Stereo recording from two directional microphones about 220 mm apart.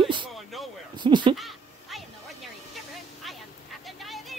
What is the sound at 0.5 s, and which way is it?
Speech, centre (ahead or behind).